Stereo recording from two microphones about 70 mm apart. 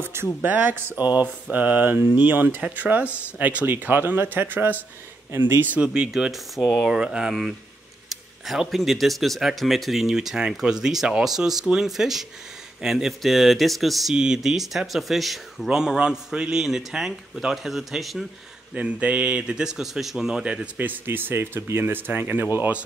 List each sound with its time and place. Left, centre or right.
0.0 s speech: right
5.8 s speech: centre
14.1 s speech: centre
18.8 s speech: centre
20.7 s speech: right